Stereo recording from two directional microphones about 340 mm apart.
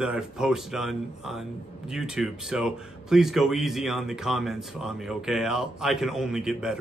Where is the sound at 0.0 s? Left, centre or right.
Centre.